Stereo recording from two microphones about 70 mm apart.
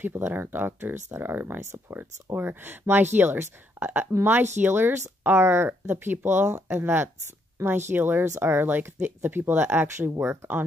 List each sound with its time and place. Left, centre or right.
0.0 s speech: right